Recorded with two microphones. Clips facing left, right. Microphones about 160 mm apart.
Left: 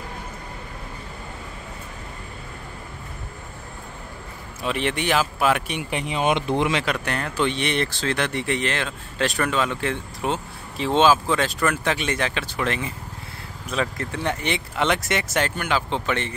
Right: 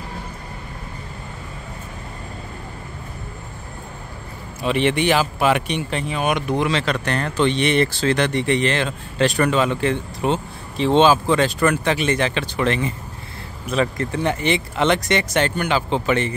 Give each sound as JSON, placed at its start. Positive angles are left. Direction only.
{"t": 4.6, "sound": "speech", "side_deg": 0}
{"t": 5.8, "sound": "speech", "side_deg": 15}
{"t": 6.8, "sound": "speech", "side_deg": 5}